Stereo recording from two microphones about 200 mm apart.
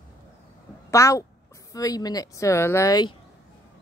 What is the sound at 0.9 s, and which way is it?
Speech, 15° left (ahead or behind).